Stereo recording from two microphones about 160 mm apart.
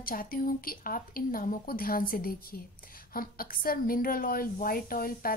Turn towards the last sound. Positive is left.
turn(degrees=65)  # may be behind; listen again after turning